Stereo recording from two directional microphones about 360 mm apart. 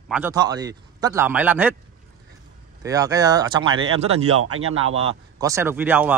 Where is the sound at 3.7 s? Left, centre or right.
Right.